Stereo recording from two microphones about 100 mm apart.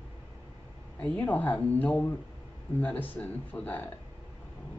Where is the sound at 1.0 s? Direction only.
15° left (ahead or behind).